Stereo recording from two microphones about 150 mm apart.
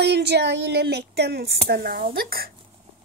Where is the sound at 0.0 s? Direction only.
90° right.